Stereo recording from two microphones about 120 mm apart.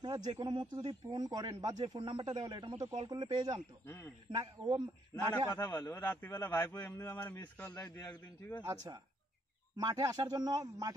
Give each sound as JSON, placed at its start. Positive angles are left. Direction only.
{"t": 0.0, "sound": "a sound", "side_deg": -35}
{"t": 0.4, "sound": "speech", "side_deg": -40}
{"t": 3.8, "sound": "a man's voice", "side_deg": 25}
{"t": 4.4, "sound": "speech", "side_deg": -35}
{"t": 5.6, "sound": "a man's voice", "side_deg": 20}
{"t": 7.8, "sound": "a man's voice", "side_deg": 30}
{"t": 8.1, "sound": "a man's voice", "side_deg": 15}
{"t": 8.6, "sound": "speech", "side_deg": -30}